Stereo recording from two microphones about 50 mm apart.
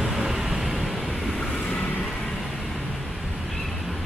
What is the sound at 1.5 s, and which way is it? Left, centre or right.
Vehicle, left.